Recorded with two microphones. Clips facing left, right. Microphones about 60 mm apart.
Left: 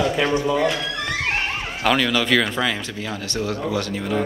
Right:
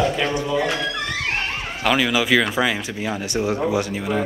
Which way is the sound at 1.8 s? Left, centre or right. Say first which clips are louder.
Even; centre.